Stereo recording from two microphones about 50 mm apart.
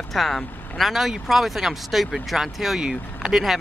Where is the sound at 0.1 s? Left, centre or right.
Centre.